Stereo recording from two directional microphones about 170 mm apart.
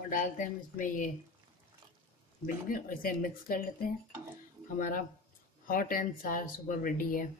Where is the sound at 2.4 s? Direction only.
55° left (ahead or behind).